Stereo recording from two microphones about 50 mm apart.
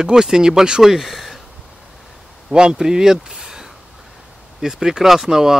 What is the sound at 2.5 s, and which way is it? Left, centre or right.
Speech, centre.